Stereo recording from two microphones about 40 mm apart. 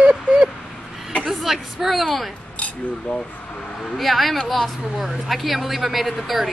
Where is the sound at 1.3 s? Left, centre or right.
Centre.